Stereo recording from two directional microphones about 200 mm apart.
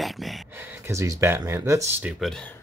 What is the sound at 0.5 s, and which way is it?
Speech, 10° right (ahead or behind).